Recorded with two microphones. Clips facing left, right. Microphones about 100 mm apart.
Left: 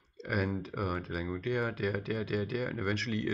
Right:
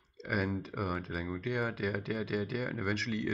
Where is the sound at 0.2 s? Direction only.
Centre (ahead or behind).